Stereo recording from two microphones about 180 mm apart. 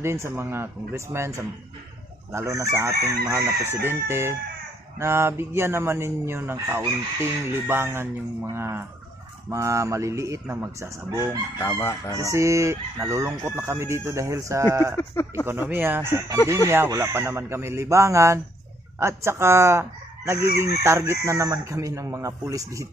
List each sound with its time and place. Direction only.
0.0 s chicken: 15° right (ahead or behind)
11.6 s chicken: 15° left (ahead or behind)
12.2 s chicken: 15° right (ahead or behind)
15.0 s chicken: 15° left (ahead or behind)
15.4 s chicken: 10° right (ahead or behind)